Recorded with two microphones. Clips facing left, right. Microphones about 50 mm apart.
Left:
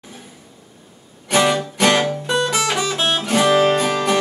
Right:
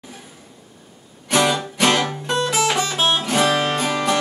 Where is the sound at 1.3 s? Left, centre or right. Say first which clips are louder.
Left 2 dB; left.